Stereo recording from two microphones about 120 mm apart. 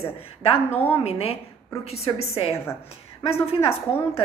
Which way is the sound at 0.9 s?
55° left (ahead or behind).